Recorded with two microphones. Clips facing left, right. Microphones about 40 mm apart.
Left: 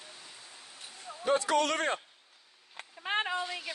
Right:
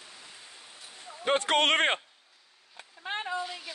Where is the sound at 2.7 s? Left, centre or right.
Left.